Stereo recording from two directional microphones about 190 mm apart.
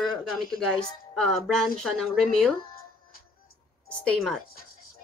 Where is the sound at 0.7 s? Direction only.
5° left (ahead or behind).